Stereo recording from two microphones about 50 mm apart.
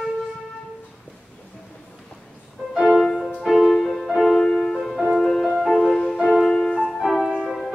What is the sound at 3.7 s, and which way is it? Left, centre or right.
Music, centre.